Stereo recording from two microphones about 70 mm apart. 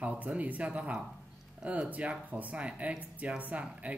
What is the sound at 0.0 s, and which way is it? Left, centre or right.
Speech, centre.